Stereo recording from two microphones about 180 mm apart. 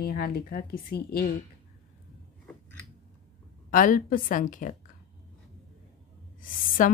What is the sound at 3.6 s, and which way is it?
A woman's voice, 50° left (ahead or behind).